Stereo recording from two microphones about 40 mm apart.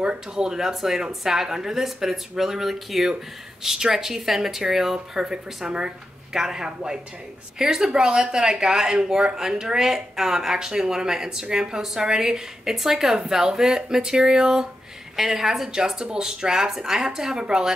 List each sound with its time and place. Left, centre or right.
0.0 s speech: right